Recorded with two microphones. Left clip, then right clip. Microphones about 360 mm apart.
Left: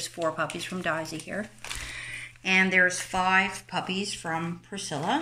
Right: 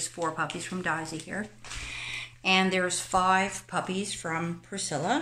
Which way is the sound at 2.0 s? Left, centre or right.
Centre.